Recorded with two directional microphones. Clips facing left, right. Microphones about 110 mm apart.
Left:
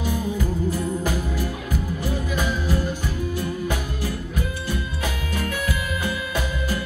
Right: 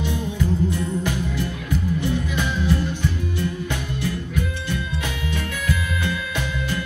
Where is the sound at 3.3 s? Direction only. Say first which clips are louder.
Even; 40° left (ahead or behind).